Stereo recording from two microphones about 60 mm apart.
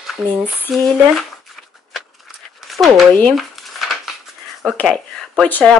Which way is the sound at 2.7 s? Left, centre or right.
Centre.